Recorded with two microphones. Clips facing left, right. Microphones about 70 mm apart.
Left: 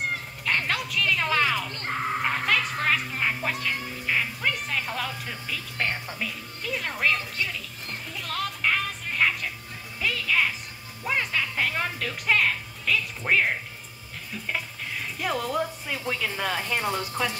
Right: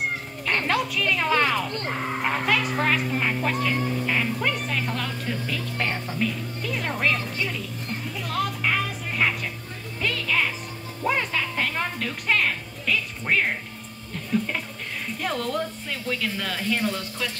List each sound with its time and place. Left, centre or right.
0.5 s speech: centre
8.2 s music: centre
14.3 s speech: centre; by 17.3 s left